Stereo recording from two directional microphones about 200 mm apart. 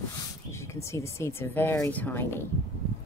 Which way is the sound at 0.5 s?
15° left (ahead or behind).